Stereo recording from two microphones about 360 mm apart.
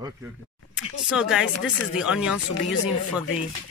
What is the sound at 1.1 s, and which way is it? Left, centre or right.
Speech, centre.